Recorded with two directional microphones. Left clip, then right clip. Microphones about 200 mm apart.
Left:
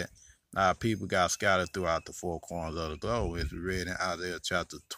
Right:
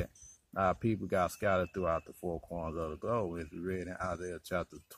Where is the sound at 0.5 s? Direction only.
10° left (ahead or behind).